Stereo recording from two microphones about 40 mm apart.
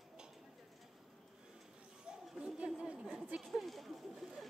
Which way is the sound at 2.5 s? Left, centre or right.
Right.